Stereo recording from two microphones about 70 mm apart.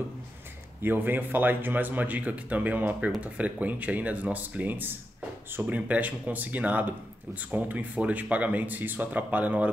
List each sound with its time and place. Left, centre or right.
0.8 s speech: right